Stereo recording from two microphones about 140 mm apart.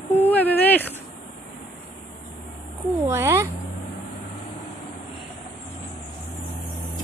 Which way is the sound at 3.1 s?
20° right (ahead or behind).